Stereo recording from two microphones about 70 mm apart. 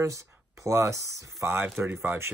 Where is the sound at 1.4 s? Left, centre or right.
Right.